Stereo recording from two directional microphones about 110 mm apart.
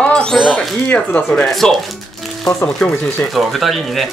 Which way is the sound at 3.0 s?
5° left (ahead or behind).